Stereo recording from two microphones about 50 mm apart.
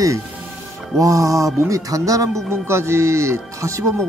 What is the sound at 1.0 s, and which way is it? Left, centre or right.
Speech, right.